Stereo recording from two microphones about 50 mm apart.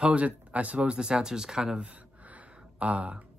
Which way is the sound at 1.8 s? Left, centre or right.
Right.